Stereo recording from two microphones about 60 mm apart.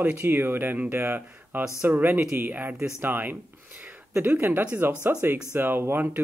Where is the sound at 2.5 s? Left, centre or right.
Right.